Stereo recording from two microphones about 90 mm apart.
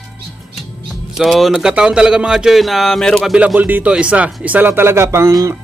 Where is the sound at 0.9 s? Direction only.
Centre (ahead or behind).